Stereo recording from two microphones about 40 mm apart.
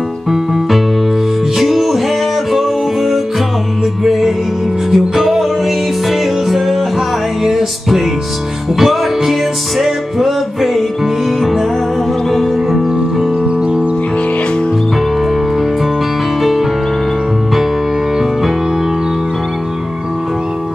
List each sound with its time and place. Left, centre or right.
0.3 s music: centre
13.4 s music: right
16.3 s music: centre